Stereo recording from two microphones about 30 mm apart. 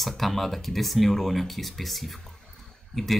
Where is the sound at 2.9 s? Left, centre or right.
Centre.